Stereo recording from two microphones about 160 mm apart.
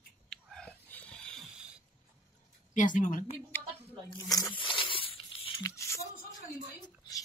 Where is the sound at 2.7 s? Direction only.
55° left (ahead or behind).